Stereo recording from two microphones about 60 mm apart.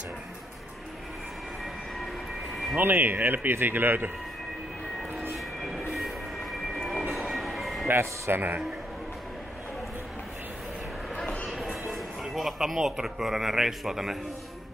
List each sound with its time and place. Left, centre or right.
2.8 s speech: right
5.3 s vehicle: centre
6.8 s music: centre
7.9 s speech: right
11.4 s train: centre
11.9 s speech: centre